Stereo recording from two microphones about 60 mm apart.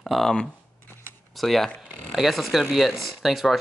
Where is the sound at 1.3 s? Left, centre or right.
Centre.